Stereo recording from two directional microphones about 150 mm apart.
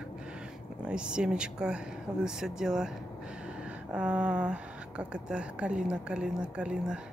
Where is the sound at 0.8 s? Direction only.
5° right (ahead or behind).